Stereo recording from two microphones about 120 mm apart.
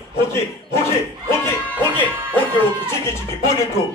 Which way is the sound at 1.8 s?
15° left (ahead or behind).